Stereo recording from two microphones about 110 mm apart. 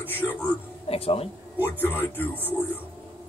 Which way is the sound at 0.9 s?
65° left (ahead or behind).